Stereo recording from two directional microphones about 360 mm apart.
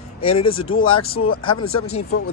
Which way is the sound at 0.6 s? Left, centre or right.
Left.